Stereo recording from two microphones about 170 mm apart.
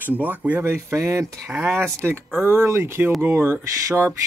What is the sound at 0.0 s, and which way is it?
Speech, 10° right (ahead or behind).